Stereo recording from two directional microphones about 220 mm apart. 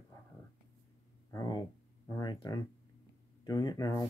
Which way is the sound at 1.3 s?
15° left (ahead or behind).